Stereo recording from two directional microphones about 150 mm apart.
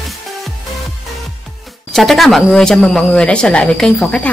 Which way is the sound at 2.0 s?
Centre (ahead or behind).